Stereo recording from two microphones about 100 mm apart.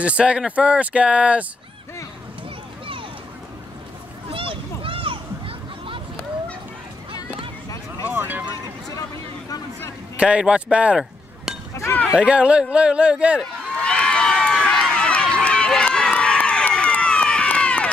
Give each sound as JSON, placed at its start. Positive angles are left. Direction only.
{"t": 0.0, "sound": "speech", "side_deg": -10}
{"t": 4.3, "sound": "a sound", "side_deg": -65}
{"t": 8.1, "sound": "a sound", "side_deg": -20}
{"t": 10.1, "sound": "speech", "side_deg": -10}
{"t": 11.7, "sound": "chink", "side_deg": 25}
{"t": 12.2, "sound": "speech", "side_deg": -10}
{"t": 13.4, "sound": "run", "side_deg": 10}